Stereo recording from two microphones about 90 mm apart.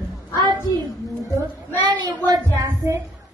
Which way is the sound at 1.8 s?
55° right (ahead or behind).